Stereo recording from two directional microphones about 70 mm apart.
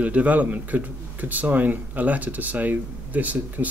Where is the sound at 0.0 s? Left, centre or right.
Centre.